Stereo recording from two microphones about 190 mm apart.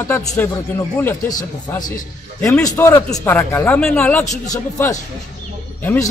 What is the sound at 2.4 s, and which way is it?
Speech, 15° left (ahead or behind).